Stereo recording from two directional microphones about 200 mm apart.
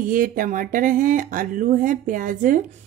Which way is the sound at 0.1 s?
45° right (ahead or behind).